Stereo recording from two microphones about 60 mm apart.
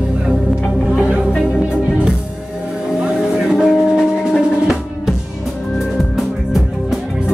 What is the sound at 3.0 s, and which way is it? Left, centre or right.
Music, centre.